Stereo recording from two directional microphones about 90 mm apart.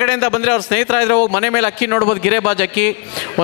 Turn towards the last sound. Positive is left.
turn(degrees=25)  # may be behind; listen again after turning